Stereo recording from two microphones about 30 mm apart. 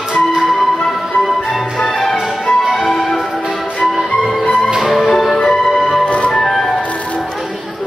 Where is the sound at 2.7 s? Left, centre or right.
Centre.